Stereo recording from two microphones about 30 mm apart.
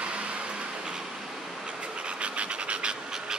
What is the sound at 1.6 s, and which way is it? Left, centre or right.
Train, right.